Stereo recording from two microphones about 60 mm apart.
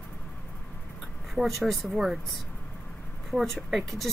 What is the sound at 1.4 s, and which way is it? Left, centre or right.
Speech, centre.